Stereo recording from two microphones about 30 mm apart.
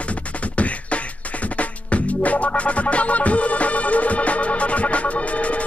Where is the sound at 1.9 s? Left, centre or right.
Left.